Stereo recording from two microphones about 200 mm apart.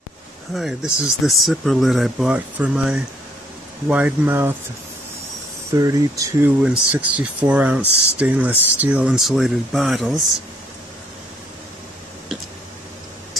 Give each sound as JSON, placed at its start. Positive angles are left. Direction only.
{"t": 0.6, "sound": "speech", "side_deg": 0}
{"t": 5.7, "sound": "speech", "side_deg": -15}